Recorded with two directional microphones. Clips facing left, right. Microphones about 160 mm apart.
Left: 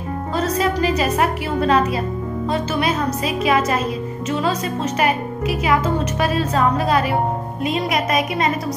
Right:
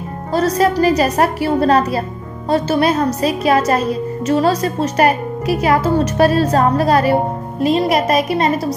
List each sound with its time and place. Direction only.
0.3 s a woman's voice: 35° right (ahead or behind)